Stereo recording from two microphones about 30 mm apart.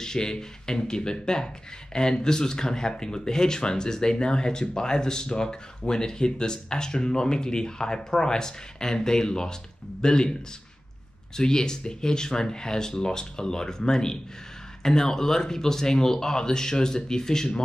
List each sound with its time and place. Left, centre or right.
0.0 s speech: left
11.3 s speech: left